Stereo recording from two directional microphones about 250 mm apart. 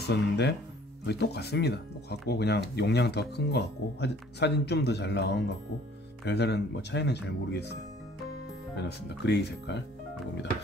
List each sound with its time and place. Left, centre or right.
0.1 s speech: left
8.7 s speech: left